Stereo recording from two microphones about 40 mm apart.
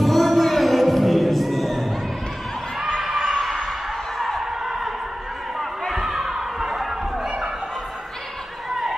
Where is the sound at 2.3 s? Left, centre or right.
Centre.